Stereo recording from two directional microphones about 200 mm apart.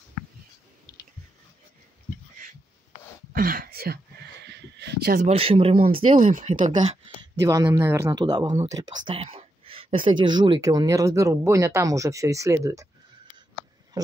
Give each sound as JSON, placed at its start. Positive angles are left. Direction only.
{"t": 3.3, "sound": "a sound", "side_deg": -45}
{"t": 5.3, "sound": "speech", "side_deg": -30}
{"t": 6.2, "sound": "speech", "side_deg": -40}
{"t": 7.4, "sound": "speech", "side_deg": -15}
{"t": 14.0, "sound": "speech", "side_deg": -20}